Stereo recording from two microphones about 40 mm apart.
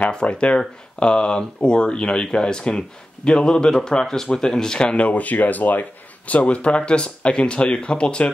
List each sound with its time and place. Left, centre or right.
0.0 s speech: left
4.7 s speech: left